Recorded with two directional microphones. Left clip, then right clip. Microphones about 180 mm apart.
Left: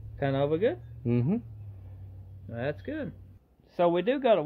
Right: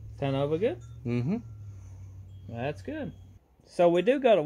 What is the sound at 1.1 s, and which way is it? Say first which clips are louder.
Speech: left 3 dB; 30° left (ahead or behind).